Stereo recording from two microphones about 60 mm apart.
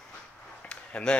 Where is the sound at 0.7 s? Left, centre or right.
Centre.